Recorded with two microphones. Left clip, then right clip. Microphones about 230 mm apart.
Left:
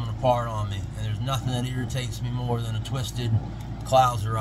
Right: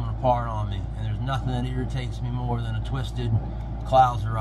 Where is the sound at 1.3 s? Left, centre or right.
Left.